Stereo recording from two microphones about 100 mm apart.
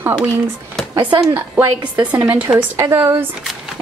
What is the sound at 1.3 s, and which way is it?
Speech, 20° right (ahead or behind).